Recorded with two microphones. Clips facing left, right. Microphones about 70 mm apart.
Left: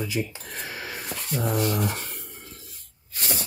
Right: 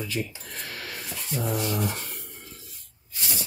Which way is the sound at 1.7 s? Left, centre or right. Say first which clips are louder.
Left 2 dB; left.